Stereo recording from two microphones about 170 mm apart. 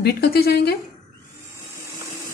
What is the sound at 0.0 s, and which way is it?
Speech, 70° left (ahead or behind).